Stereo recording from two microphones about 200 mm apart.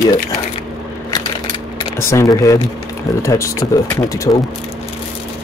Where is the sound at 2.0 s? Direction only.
15° left (ahead or behind).